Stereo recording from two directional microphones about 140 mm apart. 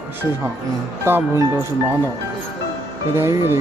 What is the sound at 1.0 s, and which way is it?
Speech, 15° right (ahead or behind).